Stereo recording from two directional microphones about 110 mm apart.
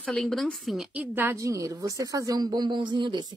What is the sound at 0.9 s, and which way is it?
A woman's voice, 20° right (ahead or behind).